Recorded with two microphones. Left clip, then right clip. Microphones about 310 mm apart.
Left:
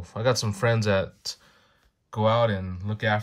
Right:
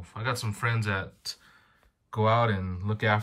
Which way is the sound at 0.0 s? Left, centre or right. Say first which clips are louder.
Left 7 dB; centre.